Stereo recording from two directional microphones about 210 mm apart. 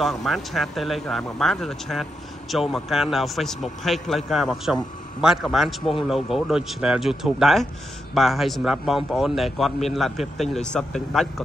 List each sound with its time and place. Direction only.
0.0 s speech: centre (ahead or behind)